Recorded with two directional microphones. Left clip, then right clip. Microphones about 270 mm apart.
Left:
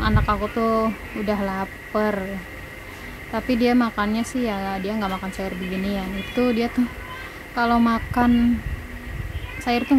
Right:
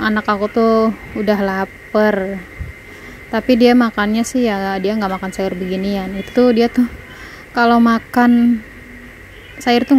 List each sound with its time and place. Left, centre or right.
0.0 s a woman's voice: right
3.3 s a woman's voice: right
9.7 s a woman's voice: right